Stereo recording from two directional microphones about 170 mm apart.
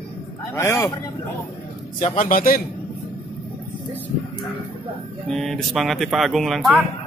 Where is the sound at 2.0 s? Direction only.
50° left (ahead or behind).